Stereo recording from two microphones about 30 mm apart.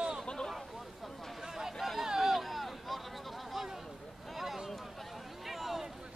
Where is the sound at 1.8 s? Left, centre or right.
Centre.